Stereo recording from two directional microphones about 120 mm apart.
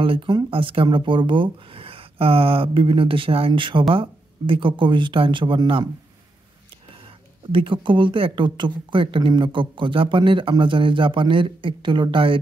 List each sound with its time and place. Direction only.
0.0 s speech: 45° right (ahead or behind)
7.5 s speech: 45° right (ahead or behind)